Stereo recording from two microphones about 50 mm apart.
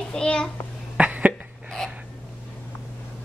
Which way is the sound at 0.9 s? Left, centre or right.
Right.